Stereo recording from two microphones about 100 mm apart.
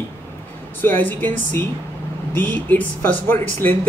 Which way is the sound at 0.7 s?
20° left (ahead or behind).